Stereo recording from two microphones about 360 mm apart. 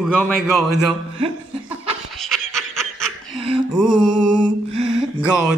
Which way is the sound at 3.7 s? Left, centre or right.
Centre.